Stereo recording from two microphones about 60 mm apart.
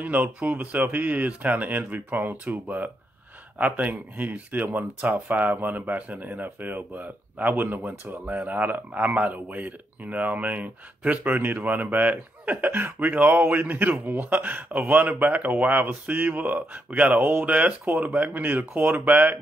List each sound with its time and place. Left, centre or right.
0.0 s speech: right